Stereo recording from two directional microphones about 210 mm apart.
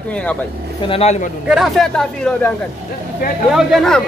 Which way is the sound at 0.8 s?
30° left (ahead or behind).